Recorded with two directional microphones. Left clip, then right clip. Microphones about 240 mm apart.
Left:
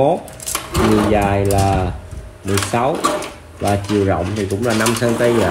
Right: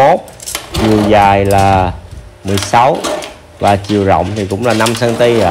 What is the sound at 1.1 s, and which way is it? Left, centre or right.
Music, right.